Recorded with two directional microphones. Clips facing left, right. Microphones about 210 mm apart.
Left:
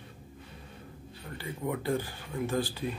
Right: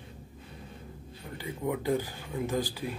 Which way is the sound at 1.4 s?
15° right (ahead or behind).